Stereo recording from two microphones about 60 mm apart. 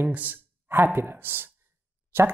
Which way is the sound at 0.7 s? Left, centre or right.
Right.